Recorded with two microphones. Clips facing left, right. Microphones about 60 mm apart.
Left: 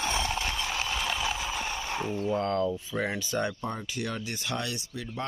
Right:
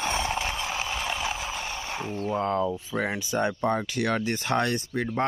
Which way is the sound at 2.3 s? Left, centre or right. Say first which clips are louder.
Right 2 dB; centre.